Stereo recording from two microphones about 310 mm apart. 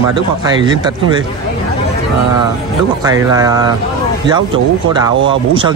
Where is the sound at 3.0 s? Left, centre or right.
Centre.